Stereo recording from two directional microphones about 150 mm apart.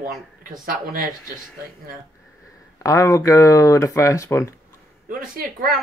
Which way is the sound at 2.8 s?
20° left (ahead or behind).